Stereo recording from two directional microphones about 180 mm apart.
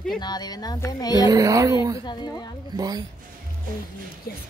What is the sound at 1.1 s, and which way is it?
Speech, 20° right (ahead or behind).